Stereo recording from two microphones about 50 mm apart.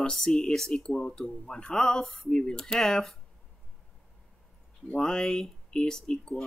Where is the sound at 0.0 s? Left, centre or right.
Centre.